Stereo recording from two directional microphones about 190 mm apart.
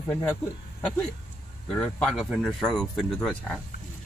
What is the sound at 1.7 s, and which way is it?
Speech, 5° left (ahead or behind).